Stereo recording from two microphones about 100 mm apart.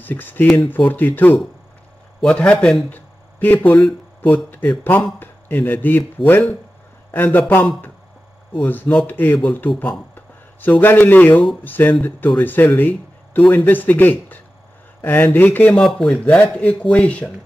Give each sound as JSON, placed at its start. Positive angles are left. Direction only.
{"t": 0.0, "sound": "speech", "side_deg": 20}
{"t": 2.9, "sound": "a sound", "side_deg": 20}
{"t": 4.2, "sound": "speech", "side_deg": 15}
{"t": 8.6, "sound": "speech", "side_deg": 20}
{"t": 9.8, "sound": "a sound", "side_deg": 20}
{"t": 10.8, "sound": "speech", "side_deg": 20}
{"t": 15.8, "sound": "speech", "side_deg": 5}